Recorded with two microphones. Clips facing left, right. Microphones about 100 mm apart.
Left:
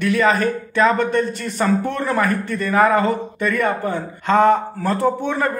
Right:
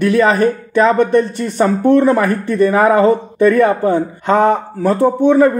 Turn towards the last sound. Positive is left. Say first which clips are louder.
# right 9 dB
turn(degrees=-20)  # may be behind; listen again after turning